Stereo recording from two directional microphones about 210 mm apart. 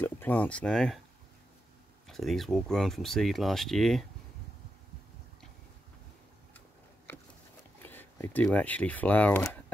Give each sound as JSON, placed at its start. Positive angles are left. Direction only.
{"t": 0.0, "sound": "speech", "side_deg": 10}
{"t": 2.0, "sound": "speech", "side_deg": 0}
{"t": 7.8, "sound": "speech", "side_deg": 10}